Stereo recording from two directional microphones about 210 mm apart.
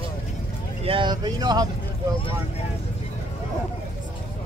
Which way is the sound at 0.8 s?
25° right (ahead or behind).